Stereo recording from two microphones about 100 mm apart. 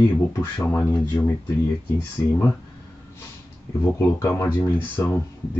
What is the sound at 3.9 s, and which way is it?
Speech, 25° left (ahead or behind).